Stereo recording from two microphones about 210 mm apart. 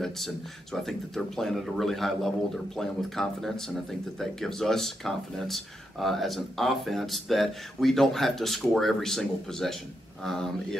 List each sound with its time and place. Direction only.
0.7 s speech: centre (ahead or behind)